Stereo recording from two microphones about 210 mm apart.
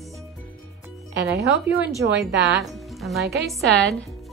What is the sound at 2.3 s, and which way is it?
Speech, 55° right (ahead or behind).